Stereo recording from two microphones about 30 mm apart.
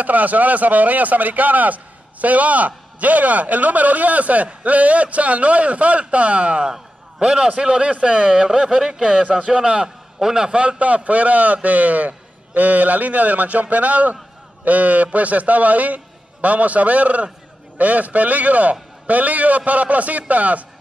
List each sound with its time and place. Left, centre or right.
0.0 s a man's voice: right
10.8 s speech: right